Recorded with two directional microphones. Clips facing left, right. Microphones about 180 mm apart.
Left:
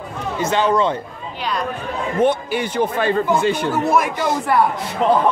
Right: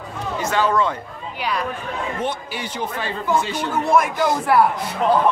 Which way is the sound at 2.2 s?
55° left (ahead or behind).